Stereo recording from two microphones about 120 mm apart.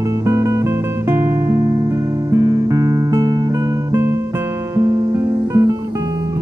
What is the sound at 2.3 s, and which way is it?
Music, 30° right (ahead or behind).